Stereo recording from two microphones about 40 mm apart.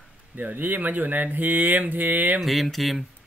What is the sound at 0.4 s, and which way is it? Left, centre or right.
Speech, right.